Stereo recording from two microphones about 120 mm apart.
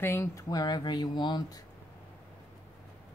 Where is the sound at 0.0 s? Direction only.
20° left (ahead or behind); by 1.6 s 40° left (ahead or behind).